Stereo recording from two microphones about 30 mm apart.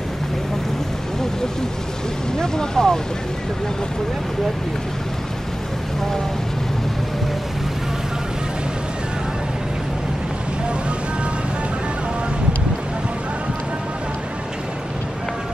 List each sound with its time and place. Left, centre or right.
2.3 s speech: left